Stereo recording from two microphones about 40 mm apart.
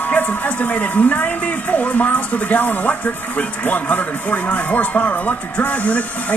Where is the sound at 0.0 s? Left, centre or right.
Left.